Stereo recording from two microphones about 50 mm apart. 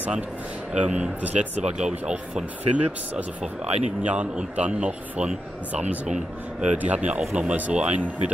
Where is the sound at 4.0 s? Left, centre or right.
Right.